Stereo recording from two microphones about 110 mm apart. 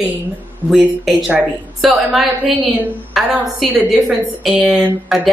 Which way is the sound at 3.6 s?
15° right (ahead or behind).